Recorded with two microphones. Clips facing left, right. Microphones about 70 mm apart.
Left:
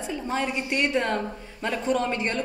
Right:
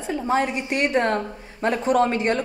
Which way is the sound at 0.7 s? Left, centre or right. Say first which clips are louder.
Right 3 dB; right.